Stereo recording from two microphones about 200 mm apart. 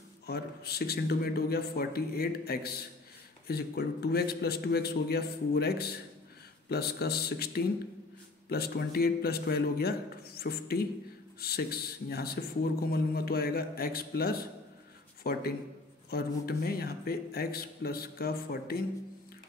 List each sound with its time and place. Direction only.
0.3 s a man's voice: 55° left (ahead or behind)